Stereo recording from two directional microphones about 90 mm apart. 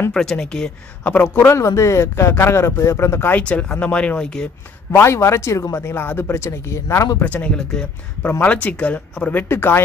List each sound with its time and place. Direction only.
0.1 s speech: 5° left (ahead or behind)
1.0 s speech: 20° left (ahead or behind)
1.5 s speech: 35° left (ahead or behind); by 4.5 s 10° left (ahead or behind)
4.9 s speech: 30° left (ahead or behind)
7.2 s speech: 15° left (ahead or behind)
8.2 s speech: 20° left (ahead or behind)